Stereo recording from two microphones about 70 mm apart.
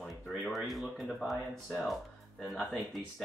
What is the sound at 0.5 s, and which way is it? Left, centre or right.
Speech, centre.